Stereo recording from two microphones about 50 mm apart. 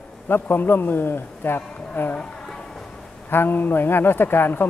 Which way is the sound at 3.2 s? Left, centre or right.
Left.